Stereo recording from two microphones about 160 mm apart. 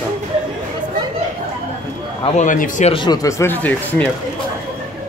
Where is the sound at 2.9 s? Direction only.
30° left (ahead or behind); by 4.1 s 10° left (ahead or behind).